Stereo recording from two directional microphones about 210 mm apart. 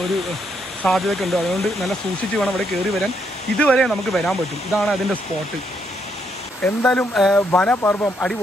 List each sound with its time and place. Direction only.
0.8 s speech: centre (ahead or behind)
6.6 s speech: 5° left (ahead or behind)